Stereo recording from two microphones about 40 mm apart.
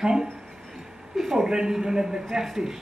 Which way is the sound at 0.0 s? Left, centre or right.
Centre.